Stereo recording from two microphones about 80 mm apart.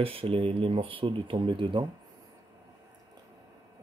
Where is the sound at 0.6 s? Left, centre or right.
Right.